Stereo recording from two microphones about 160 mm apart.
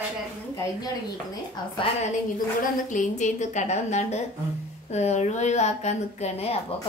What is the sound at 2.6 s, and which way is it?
A woman's voice, 50° left (ahead or behind).